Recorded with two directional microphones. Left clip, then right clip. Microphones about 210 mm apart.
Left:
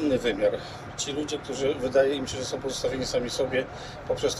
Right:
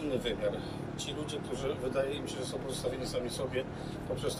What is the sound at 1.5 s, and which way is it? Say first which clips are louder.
Speech: left 10 dB; 35° left (ahead or behind).